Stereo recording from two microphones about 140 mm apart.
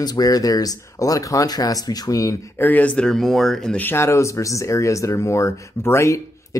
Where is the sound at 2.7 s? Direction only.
10° left (ahead or behind).